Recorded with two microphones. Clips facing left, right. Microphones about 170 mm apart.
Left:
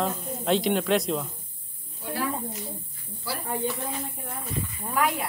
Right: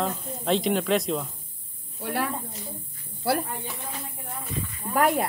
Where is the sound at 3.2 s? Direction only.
60° right (ahead or behind).